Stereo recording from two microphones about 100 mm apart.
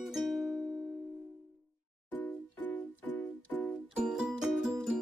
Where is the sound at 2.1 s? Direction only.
15° left (ahead or behind).